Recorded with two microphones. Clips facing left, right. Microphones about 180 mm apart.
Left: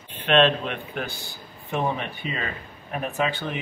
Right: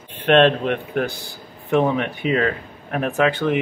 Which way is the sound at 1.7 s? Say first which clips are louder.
Right 8 dB; 75° right (ahead or behind).